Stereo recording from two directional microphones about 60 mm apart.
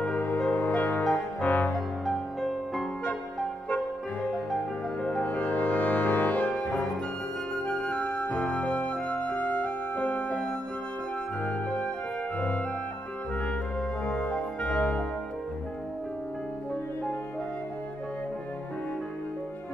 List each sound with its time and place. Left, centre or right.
0.5 s music: left
2.0 s music: centre
5.2 s music: left
6.5 s music: centre
12.4 s music: left
14.0 s music: centre